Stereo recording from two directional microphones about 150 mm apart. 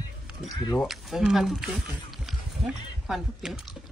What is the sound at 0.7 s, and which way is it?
Speech, centre (ahead or behind).